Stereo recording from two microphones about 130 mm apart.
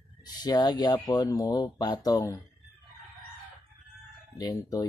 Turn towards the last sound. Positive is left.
turn(degrees=30)  # may be behind; listen again after turning